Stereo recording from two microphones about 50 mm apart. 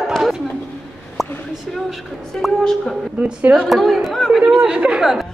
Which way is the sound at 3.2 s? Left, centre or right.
Right.